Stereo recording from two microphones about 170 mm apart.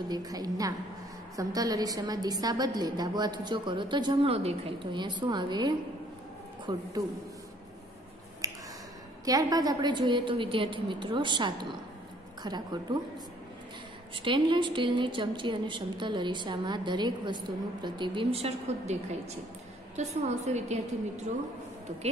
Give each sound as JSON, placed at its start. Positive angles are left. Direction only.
{"t": 0.1, "sound": "a woman's voice", "side_deg": -20}
{"t": 8.4, "sound": "finger snapping", "side_deg": -20}
{"t": 9.2, "sound": "a woman's voice", "side_deg": -20}
{"t": 14.1, "sound": "a woman's voice", "side_deg": -30}
{"t": 20.0, "sound": "a woman's voice", "side_deg": -40}